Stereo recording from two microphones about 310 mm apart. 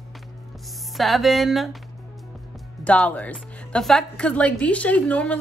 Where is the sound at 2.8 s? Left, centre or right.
Centre.